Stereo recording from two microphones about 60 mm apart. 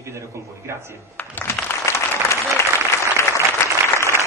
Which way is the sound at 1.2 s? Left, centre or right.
Left.